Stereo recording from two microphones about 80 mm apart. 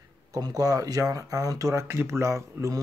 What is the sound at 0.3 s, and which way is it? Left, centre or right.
Speech, right.